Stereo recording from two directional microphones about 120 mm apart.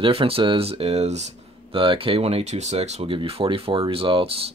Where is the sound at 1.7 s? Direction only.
45° right (ahead or behind).